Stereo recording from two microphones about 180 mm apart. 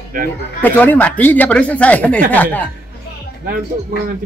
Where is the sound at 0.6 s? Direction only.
10° left (ahead or behind).